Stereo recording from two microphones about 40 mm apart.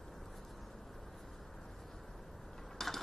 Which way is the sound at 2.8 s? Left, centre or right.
Centre.